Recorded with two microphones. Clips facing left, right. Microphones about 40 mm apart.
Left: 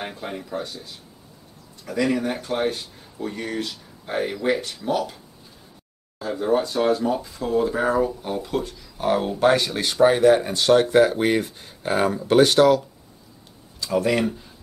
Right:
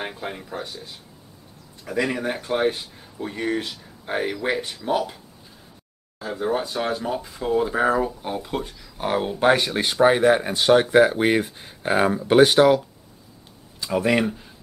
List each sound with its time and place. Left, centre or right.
0.0 s speech: centre
6.1 s speech: centre
13.8 s speech: centre